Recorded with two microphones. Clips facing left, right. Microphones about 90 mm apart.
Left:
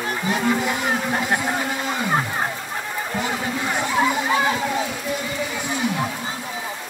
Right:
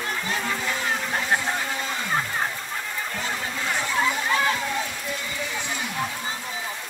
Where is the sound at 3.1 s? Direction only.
20° left (ahead or behind).